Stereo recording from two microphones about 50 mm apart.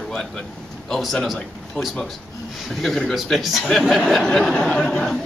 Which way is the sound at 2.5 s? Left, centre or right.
Centre.